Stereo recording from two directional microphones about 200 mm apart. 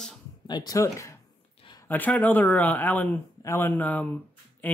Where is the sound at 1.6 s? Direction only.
20° left (ahead or behind).